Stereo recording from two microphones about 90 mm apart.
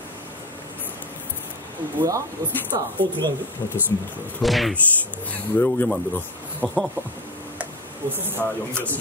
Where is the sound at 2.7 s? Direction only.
55° right (ahead or behind).